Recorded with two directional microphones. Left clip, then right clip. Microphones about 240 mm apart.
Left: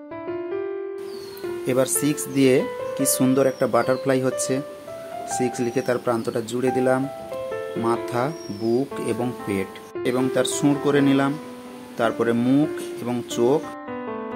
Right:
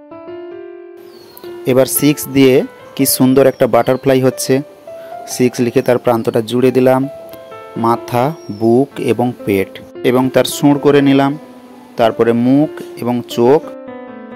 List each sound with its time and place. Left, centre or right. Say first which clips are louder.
1.6 s speech: right 10 dB; right